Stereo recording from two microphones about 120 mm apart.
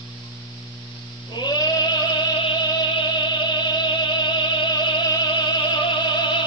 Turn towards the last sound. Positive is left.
turn(degrees=40)  # may be behind; listen again after turning